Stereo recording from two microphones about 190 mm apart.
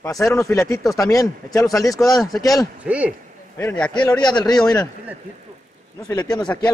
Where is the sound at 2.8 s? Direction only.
5° right (ahead or behind).